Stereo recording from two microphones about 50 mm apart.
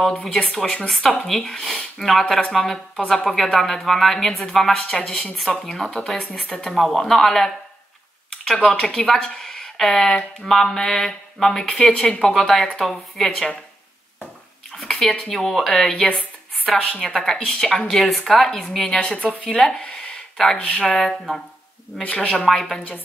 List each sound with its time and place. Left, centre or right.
0.0 s a woman's voice: centre
6.4 s speech: centre
6.7 s a woman's voice: centre
8.6 s speech: centre
11.9 s a woman's voice: centre
14.8 s speech: centre
16.7 s a woman's voice: centre
22.0 s speech: left
22.3 s speech: centre